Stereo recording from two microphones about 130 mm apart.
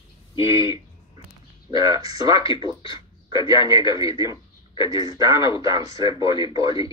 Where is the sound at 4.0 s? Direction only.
25° right (ahead or behind).